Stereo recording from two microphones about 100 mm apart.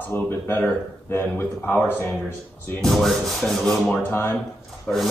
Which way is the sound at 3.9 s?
20° left (ahead or behind).